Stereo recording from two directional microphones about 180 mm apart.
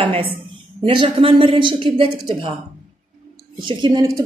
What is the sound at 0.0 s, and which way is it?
A woman's voice, 30° right (ahead or behind).